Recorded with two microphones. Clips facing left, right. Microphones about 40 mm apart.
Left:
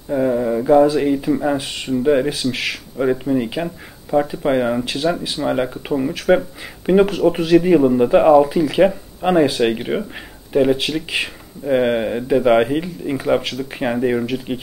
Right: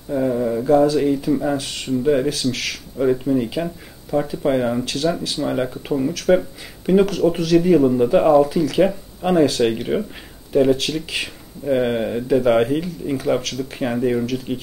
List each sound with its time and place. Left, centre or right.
0.1 s a man's voice: left